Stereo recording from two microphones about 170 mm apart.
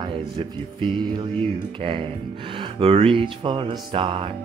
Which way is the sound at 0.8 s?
30° right (ahead or behind).